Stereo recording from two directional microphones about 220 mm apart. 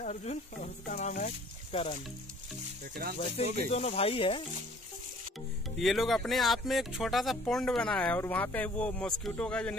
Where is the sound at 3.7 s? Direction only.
30° left (ahead or behind).